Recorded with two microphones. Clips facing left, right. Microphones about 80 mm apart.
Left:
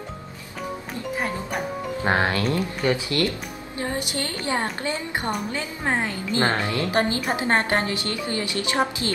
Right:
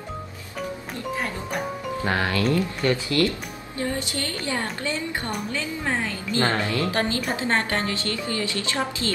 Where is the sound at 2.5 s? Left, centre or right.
Centre.